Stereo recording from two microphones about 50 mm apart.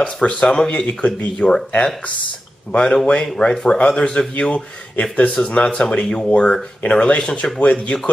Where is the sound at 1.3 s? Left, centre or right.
Centre.